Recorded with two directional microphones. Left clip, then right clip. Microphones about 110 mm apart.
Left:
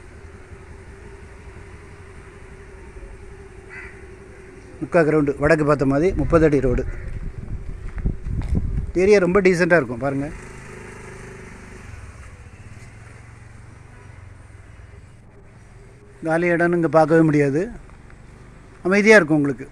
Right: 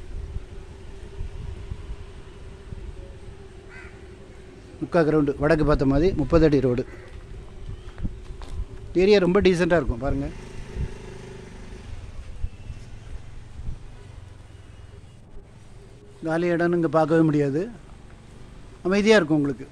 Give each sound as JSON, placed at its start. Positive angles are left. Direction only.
{"t": 4.8, "sound": "a man's voice", "side_deg": -5}
{"t": 9.0, "sound": "speech", "side_deg": -20}
{"t": 9.6, "sound": "a man's voice", "side_deg": 5}
{"t": 9.8, "sound": "a man's voice", "side_deg": 20}
{"t": 10.7, "sound": "vehicle", "side_deg": -30}
{"t": 16.3, "sound": "a man's voice", "side_deg": 20}
{"t": 18.8, "sound": "a man's voice", "side_deg": 20}